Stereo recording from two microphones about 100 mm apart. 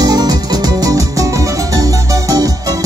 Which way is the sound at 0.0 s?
40° right (ahead or behind).